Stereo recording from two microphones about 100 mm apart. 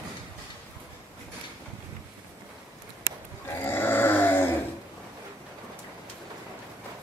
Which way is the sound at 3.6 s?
20° left (ahead or behind).